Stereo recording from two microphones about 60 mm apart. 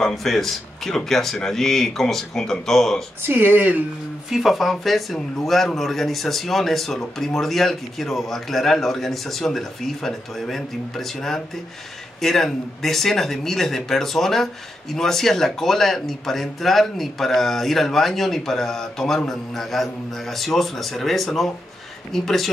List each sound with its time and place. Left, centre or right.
0.0 s a man's voice: centre
3.2 s speech: right
4.3 s a man's voice: centre